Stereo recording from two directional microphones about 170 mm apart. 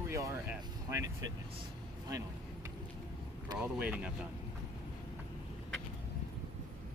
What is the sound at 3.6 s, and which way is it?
Speech, 10° right (ahead or behind).